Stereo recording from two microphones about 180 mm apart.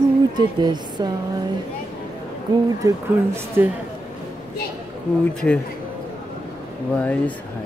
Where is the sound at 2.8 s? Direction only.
15° right (ahead or behind).